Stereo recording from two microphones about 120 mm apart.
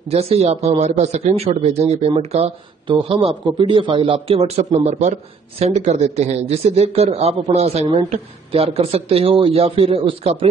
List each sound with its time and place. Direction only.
0.1 s speech: 60° right (ahead or behind)
4.7 s speech: 75° right (ahead or behind); by 10.5 s 50° right (ahead or behind)